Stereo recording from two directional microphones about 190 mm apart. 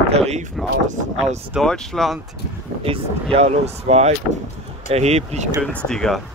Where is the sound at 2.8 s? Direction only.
30° right (ahead or behind).